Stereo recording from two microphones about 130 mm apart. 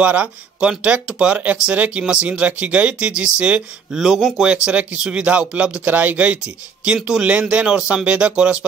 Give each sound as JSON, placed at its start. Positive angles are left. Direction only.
{"t": 0.0, "sound": "speech", "side_deg": -10}